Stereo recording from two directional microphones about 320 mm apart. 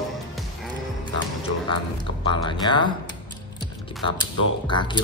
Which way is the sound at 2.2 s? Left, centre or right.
Centre.